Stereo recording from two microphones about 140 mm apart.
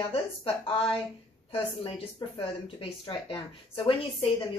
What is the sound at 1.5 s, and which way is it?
Speech, 35° left (ahead or behind).